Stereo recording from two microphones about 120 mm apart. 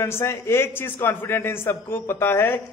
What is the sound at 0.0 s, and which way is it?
A man's voice, 20° left (ahead or behind).